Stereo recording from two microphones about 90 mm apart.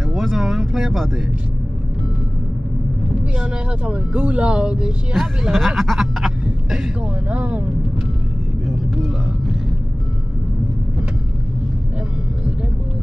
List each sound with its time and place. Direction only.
0.1 s a sound: centre (ahead or behind)
3.3 s speech: 10° right (ahead or behind)
8.6 s speech: 5° right (ahead or behind)